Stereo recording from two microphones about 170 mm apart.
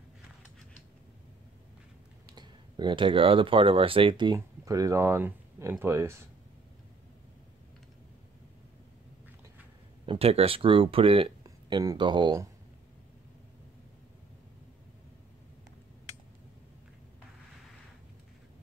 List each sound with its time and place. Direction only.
2.3 s speech: 25° right (ahead or behind)
10.0 s speech: 35° right (ahead or behind)
11.4 s speech: 20° right (ahead or behind)